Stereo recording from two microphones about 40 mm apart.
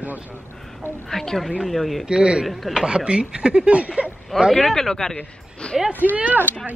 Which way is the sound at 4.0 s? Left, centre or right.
Right.